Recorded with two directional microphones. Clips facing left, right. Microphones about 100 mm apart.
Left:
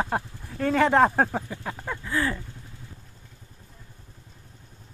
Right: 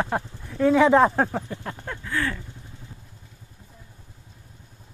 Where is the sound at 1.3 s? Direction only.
5° left (ahead or behind).